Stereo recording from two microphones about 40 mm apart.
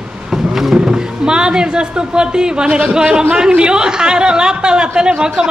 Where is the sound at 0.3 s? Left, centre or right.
Centre.